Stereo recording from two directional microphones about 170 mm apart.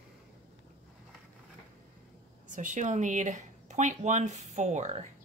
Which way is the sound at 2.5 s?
45° right (ahead or behind).